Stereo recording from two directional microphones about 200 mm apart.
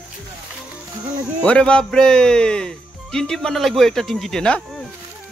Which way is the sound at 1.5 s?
5° left (ahead or behind).